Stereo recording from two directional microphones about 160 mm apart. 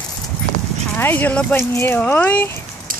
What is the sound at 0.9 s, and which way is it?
Speech, 10° left (ahead or behind).